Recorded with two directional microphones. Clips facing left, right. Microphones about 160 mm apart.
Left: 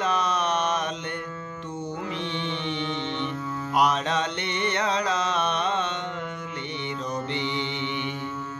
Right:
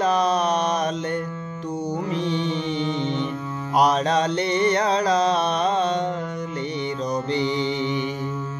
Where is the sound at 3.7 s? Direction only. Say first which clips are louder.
Right 5 dB; 40° right (ahead or behind).